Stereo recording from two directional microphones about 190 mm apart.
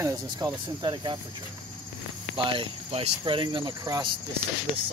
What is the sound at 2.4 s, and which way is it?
Speech, 25° right (ahead or behind).